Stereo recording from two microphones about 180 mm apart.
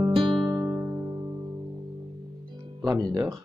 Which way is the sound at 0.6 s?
15° right (ahead or behind).